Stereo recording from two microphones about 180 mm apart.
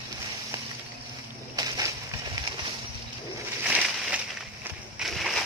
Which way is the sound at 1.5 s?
20° right (ahead or behind).